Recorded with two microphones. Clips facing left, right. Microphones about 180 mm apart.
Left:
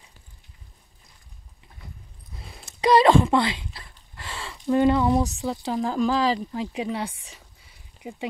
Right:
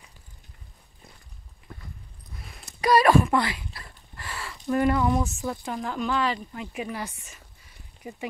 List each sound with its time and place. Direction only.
2.3 s a sound: 25° left (ahead or behind)
5.7 s speech: 30° left (ahead or behind)
8.0 s speech: 15° left (ahead or behind)